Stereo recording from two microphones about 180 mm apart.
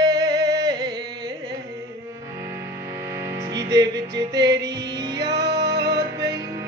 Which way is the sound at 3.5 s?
20° right (ahead or behind).